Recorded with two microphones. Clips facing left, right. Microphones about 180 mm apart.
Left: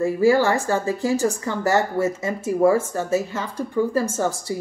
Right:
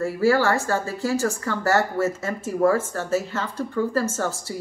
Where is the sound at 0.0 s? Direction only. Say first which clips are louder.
Left 3 dB; 15° left (ahead or behind).